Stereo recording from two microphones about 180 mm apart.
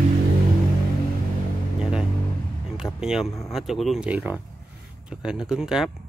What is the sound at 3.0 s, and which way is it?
Speech, centre (ahead or behind).